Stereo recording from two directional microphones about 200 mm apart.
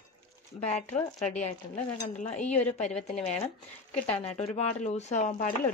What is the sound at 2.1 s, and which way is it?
Speech, 35° left (ahead or behind).